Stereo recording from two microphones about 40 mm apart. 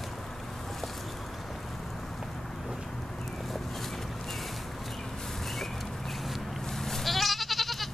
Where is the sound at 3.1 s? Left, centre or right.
Centre.